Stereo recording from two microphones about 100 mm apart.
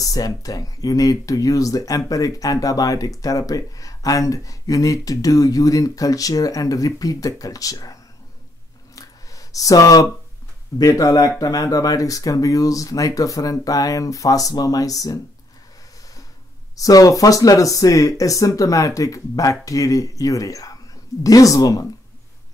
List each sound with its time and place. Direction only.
0.0 s speech: 35° left (ahead or behind)
8.9 s a sound: 35° left (ahead or behind)
10.8 s speech: 35° left (ahead or behind)
16.7 s speech: 35° left (ahead or behind)